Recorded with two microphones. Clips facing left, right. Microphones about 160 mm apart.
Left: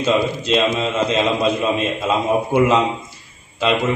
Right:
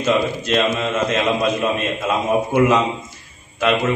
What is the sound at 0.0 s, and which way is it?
Speech, 20° left (ahead or behind).